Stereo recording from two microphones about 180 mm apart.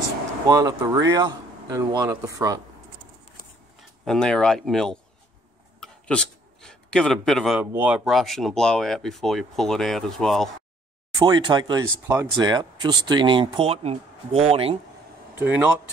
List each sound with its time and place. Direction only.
0.5 s speech: 20° right (ahead or behind)
4.0 s speech: 5° left (ahead or behind)
5.8 s a sound: 5° left (ahead or behind)
7.7 s speech: 5° right (ahead or behind)
11.1 s speech: 25° right (ahead or behind)
15.3 s speech: 10° right (ahead or behind)